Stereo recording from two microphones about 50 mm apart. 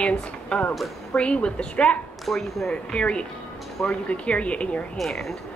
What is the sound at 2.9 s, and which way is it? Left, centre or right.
Speech, left.